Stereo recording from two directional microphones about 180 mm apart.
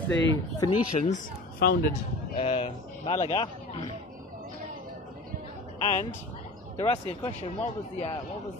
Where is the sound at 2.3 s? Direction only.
30° left (ahead or behind).